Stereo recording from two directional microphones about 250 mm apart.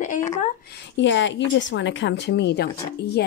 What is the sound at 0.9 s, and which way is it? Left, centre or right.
A woman's voice, left.